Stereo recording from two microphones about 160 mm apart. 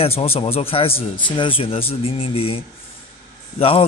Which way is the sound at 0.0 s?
40° left (ahead or behind).